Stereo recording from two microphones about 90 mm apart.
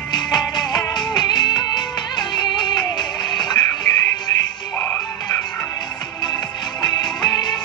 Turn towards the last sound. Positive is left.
turn(degrees=55)  # may be behind; listen again after turning